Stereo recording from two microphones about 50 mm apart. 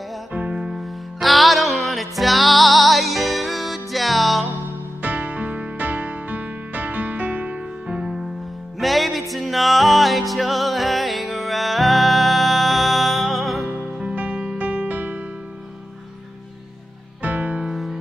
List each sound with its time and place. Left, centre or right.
0.3 s music: right
0.7 s music: centre
5.0 s music: right
7.9 s music: centre
8.7 s music: centre
14.1 s music: right
14.6 s music: right
17.2 s music: right